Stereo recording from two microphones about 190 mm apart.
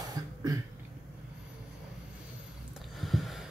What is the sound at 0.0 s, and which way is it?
Cough, 20° right (ahead or behind).